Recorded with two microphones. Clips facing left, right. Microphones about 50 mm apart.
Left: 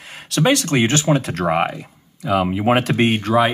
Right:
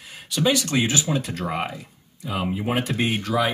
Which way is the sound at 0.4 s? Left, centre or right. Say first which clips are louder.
Left 5 dB; left.